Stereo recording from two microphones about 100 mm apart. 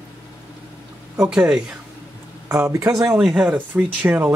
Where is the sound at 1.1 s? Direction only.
10° right (ahead or behind).